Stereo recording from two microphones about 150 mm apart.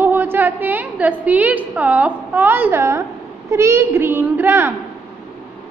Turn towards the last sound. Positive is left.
turn(degrees=-15)  # may be behind; listen again after turning